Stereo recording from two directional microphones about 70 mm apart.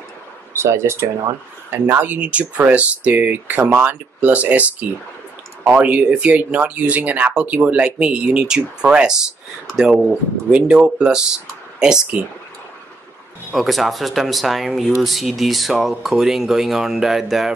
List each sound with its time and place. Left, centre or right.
0.6 s speech: right
1.7 s speech: right
13.5 s speech: centre